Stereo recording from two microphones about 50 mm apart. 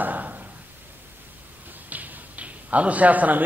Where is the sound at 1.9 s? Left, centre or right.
Right.